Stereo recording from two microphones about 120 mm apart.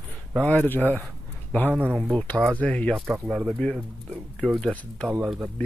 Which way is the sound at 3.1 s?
10° right (ahead or behind).